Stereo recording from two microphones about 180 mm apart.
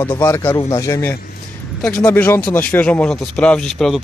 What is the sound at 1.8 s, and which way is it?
Speech, 5° left (ahead or behind).